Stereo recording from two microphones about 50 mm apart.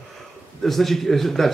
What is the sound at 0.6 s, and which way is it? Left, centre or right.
Speech, centre.